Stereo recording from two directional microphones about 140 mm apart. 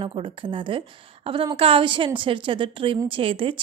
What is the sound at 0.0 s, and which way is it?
A woman's voice, 35° right (ahead or behind).